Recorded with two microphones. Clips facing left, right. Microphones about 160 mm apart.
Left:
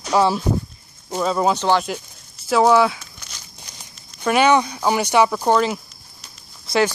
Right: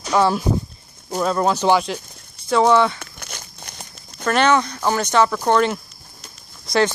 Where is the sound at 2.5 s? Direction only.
5° left (ahead or behind).